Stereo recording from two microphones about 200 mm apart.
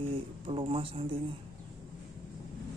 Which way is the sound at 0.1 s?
25° right (ahead or behind).